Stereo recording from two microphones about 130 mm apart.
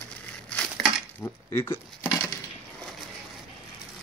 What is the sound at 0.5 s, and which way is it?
Crushing, 10° left (ahead or behind).